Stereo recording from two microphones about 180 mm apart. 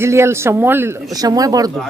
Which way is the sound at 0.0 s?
15° right (ahead or behind).